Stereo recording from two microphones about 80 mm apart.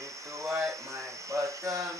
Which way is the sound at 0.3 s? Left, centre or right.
Right.